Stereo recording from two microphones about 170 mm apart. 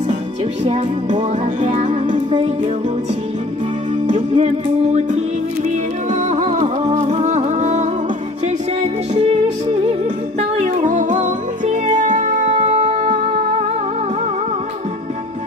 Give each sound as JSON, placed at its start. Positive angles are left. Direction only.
{"t": 0.7, "sound": "music", "side_deg": -45}
{"t": 4.1, "sound": "music", "side_deg": -45}
{"t": 10.6, "sound": "music", "side_deg": -45}